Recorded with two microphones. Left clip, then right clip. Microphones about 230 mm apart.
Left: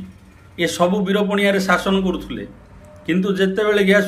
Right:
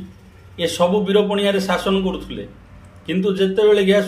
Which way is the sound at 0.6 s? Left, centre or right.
Centre.